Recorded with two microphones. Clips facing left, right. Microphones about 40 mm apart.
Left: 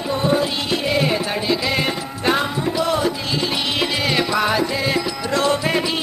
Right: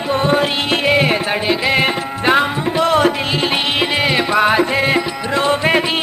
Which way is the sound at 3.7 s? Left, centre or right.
Right.